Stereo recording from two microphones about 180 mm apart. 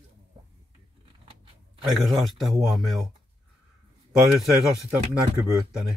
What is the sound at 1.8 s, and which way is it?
A man's voice, centre (ahead or behind).